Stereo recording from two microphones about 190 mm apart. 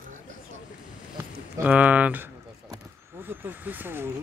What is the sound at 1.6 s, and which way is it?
Speech, 10° right (ahead or behind).